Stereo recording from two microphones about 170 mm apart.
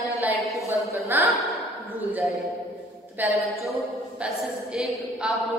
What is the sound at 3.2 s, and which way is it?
Speech, centre (ahead or behind).